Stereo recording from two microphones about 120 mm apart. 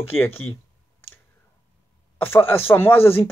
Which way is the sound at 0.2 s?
20° left (ahead or behind).